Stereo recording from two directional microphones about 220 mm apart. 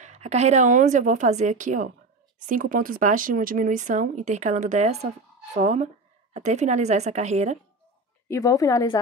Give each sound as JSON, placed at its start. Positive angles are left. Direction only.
{"t": 0.0, "sound": "speech", "side_deg": -30}
{"t": 8.3, "sound": "a woman's voice", "side_deg": 15}